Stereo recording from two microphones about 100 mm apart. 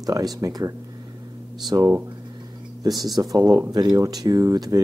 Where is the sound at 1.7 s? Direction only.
40° right (ahead or behind).